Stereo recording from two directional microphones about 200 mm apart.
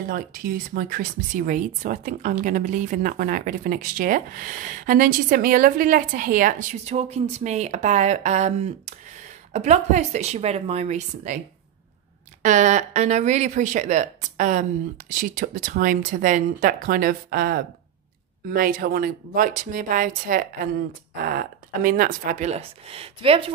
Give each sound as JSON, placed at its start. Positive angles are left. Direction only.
{"t": 0.1, "sound": "speech", "side_deg": -45}
{"t": 12.4, "sound": "speech", "side_deg": -35}
{"t": 21.8, "sound": "speech", "side_deg": -45}